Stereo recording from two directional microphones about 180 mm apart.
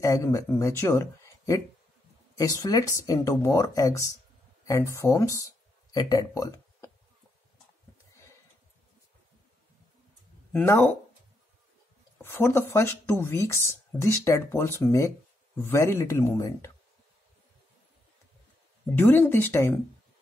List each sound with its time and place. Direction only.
0.0 s speech: 15° left (ahead or behind)
10.5 s speech: 10° left (ahead or behind)
12.2 s speech: 15° left (ahead or behind)
18.9 s speech: 10° left (ahead or behind)